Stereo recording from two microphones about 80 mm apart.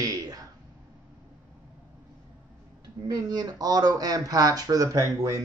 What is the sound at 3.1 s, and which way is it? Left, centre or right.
Speech, right.